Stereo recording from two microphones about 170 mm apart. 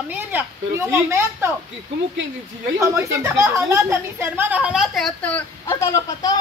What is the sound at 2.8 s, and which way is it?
A woman's voice, 15° right (ahead or behind).